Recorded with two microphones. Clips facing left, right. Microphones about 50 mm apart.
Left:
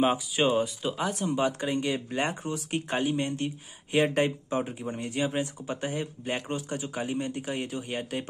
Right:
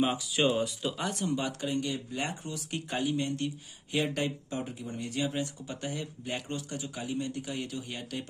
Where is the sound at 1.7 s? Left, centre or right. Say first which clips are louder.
Left 4 dB; left.